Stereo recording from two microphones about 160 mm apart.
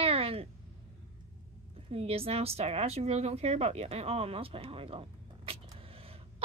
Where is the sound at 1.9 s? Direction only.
35° right (ahead or behind).